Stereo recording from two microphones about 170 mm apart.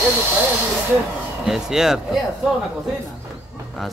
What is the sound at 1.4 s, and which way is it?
Speech, centre (ahead or behind).